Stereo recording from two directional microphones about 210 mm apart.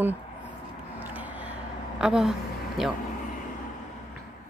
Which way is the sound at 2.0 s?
Centre (ahead or behind).